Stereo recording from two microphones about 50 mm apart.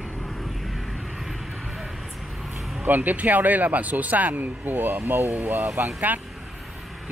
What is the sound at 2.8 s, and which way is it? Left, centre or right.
Speech, right.